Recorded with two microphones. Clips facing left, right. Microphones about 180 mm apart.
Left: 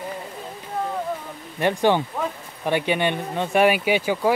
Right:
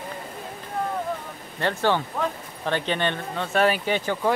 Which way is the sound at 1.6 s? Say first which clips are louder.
Left 4 dB; 15° left (ahead or behind).